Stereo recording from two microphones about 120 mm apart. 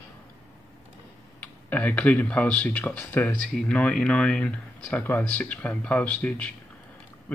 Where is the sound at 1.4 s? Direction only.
15° left (ahead or behind).